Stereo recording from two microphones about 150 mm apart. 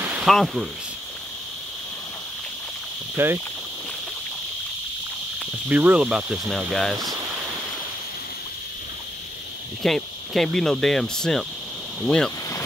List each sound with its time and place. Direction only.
0.0 s a sound: 10° right (ahead or behind)
0.3 s speech: centre (ahead or behind)
3.2 s speech: 15° right (ahead or behind)
5.7 s speech: 10° right (ahead or behind)
9.8 s speech: centre (ahead or behind)